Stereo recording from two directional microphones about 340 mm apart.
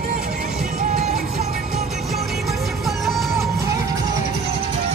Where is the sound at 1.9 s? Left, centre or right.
Centre.